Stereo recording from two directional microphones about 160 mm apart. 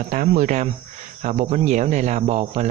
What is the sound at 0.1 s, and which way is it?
Speech, 55° right (ahead or behind).